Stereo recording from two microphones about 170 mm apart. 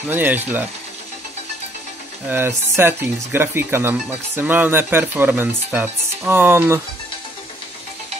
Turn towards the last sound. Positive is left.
turn(degrees=-15)  # may be behind; listen again after turning